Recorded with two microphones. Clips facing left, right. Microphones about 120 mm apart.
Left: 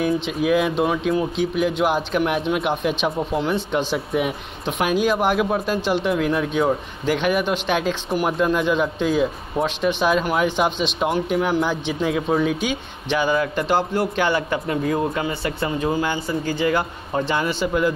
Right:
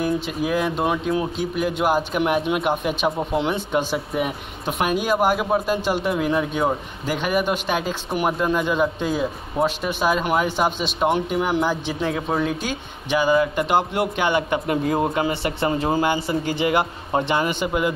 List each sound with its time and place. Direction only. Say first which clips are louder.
0.0 s speech: left 2 dB; centre (ahead or behind)
13.7 s speech: even; 15° right (ahead or behind)
14.9 s a man's voice: right 1 dB; 30° right (ahead or behind)